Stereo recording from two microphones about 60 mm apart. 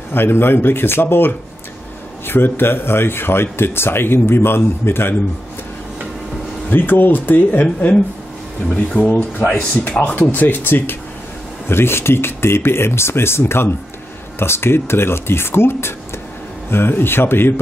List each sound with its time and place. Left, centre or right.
0.1 s speech: left
6.7 s speech: left
9.5 s speech: left